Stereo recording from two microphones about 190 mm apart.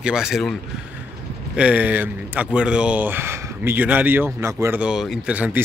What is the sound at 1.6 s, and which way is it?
Speech, 5° right (ahead or behind).